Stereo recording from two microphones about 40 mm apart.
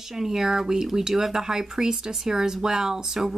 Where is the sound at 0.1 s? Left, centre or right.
Centre.